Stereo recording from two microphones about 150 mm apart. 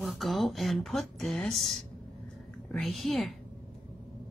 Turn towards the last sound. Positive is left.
turn(degrees=0)  # may be behind; listen again after turning